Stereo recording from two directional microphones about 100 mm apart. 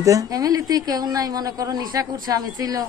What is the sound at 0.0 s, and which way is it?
A woman's voice, 35° right (ahead or behind).